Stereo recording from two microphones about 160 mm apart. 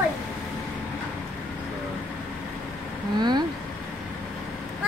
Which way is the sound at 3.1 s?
25° right (ahead or behind).